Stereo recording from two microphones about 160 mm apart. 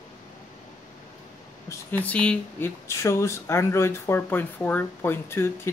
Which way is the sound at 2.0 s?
5° left (ahead or behind).